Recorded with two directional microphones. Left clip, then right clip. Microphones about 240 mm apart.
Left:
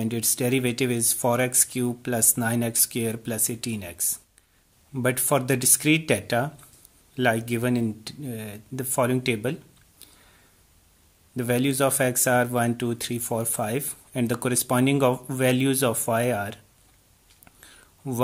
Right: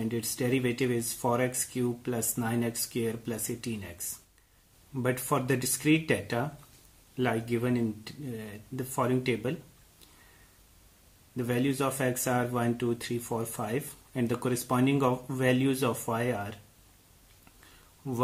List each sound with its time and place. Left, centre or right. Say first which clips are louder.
0.0 s speech: left 5 dB; left
4.9 s speech: left 6 dB; left
11.3 s speech: left 6 dB; left